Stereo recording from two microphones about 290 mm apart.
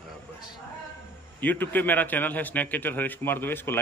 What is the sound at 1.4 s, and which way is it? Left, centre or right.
A man's voice, centre.